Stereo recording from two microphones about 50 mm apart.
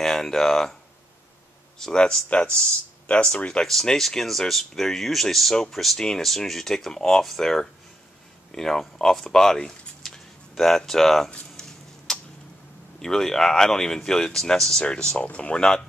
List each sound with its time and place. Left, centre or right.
0.0 s speech: centre
1.8 s speech: centre
3.6 s speech: centre
12.1 s tick-tock: centre
13.0 s speech: centre